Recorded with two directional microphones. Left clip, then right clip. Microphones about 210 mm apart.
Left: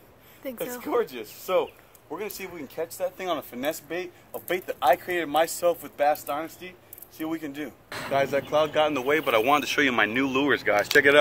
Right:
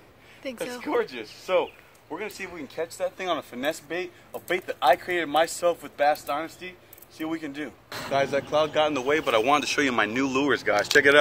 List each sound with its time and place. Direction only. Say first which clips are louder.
0.4 s speech: right 1 dB; 5° left (ahead or behind)
0.8 s speech: even; 50° left (ahead or behind)
2.7 s speech: even; 10° left (ahead or behind)